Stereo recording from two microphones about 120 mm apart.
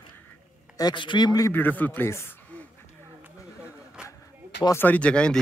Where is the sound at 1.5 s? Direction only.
15° left (ahead or behind).